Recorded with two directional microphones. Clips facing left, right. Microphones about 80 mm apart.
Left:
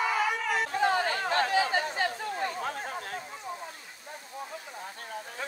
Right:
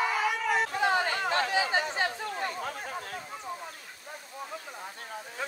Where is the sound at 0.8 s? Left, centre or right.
Centre.